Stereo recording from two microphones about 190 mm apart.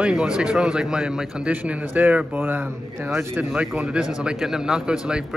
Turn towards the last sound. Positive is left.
turn(degrees=-5)  # may be behind; listen again after turning